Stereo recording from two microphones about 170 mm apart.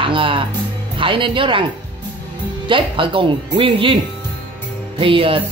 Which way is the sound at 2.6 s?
30° right (ahead or behind).